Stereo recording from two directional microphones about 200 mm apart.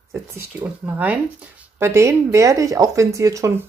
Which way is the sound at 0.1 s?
15° right (ahead or behind).